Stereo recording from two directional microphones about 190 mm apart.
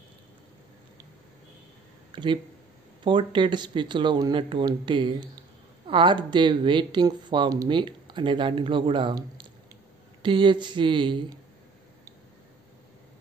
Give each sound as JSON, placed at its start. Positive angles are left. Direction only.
{"t": 2.1, "sound": "speech", "side_deg": -25}